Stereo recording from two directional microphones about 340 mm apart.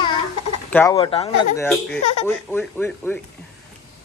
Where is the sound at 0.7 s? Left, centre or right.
Centre.